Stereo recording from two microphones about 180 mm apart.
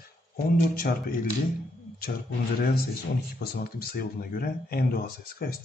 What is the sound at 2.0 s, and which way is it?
Speech, 60° left (ahead or behind).